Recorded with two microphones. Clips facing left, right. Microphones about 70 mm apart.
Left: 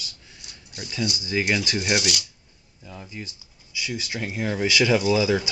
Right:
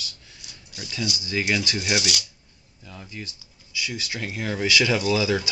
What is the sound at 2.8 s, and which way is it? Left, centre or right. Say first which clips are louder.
Speech: left 1 dB; centre.